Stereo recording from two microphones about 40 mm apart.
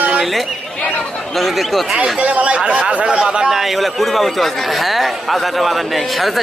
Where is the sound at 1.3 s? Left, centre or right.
Centre.